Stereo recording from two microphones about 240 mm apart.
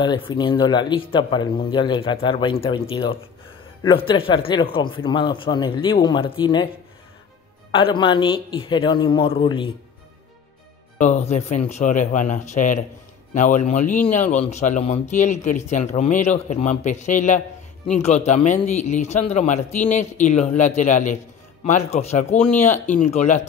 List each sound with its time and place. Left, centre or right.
0.0 s speech: centre
7.7 s speech: left
11.0 s speech: left